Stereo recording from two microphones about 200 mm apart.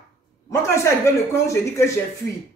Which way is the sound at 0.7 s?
15° left (ahead or behind).